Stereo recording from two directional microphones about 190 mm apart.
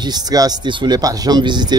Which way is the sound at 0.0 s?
20° right (ahead or behind).